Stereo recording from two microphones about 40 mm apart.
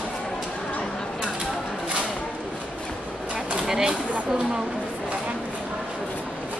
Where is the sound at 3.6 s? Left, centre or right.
Centre.